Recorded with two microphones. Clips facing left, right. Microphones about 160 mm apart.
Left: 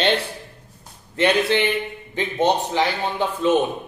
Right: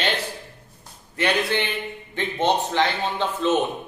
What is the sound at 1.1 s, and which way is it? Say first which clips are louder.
A man's voice: left 4 dB; 20° left (ahead or behind).